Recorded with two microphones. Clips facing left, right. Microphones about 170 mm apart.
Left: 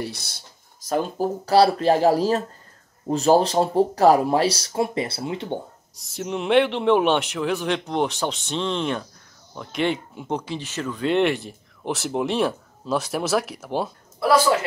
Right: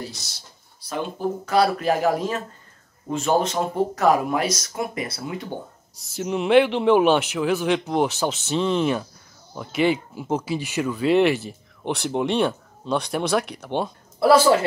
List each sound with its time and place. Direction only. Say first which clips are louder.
0.0 s speech: left 4 dB; 60° left (ahead or behind); by 5.6 s 25° left (ahead or behind)
5.9 s speech: right 2 dB; centre (ahead or behind)